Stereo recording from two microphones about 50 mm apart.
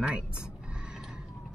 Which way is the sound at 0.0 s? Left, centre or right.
Right.